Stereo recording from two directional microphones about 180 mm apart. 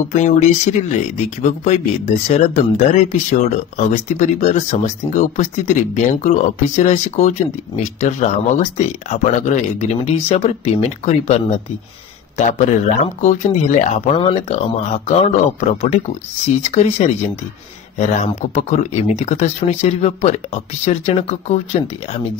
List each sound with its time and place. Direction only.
0.1 s speech: 40° left (ahead or behind)